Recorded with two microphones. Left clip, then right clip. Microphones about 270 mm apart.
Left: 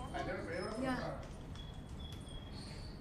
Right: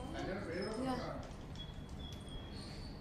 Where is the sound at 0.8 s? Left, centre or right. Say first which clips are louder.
Left 3 dB; centre.